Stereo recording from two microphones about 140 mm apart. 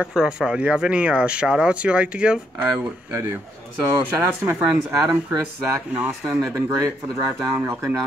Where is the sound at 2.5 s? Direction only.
20° right (ahead or behind).